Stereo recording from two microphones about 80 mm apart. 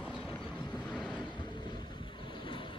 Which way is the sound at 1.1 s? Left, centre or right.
Left.